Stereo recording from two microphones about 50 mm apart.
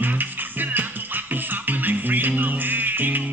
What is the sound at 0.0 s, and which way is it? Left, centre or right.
Music, right.